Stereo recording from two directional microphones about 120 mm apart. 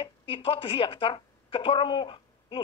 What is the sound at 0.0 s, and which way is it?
A woman's voice, 45° left (ahead or behind).